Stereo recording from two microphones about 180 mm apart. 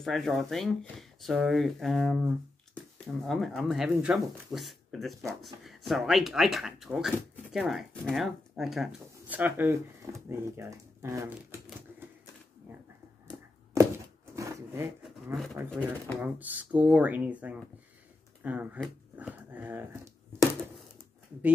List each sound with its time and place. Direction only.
0.0 s speech: centre (ahead or behind); by 11.6 s 15° right (ahead or behind)
14.3 s a sound: 15° right (ahead or behind)
15.8 s speech: 10° right (ahead or behind)